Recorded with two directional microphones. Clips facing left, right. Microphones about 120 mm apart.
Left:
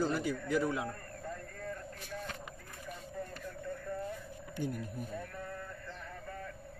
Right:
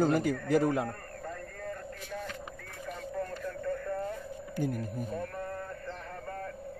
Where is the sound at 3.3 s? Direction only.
70° right (ahead or behind).